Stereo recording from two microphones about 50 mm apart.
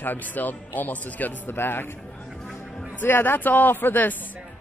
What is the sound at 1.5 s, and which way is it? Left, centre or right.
Speech, left.